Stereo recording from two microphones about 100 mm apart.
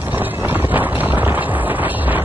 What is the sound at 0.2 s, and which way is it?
Vehicle, 20° right (ahead or behind).